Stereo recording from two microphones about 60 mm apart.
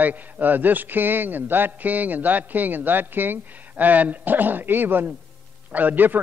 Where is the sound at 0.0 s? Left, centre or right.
Right.